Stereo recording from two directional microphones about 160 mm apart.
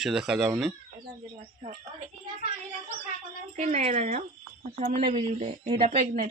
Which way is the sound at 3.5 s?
45° right (ahead or behind).